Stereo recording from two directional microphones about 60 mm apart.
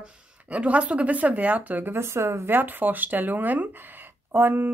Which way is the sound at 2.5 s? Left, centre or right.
Right.